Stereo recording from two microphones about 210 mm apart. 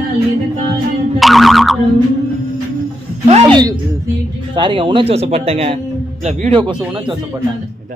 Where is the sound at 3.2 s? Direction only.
20° right (ahead or behind).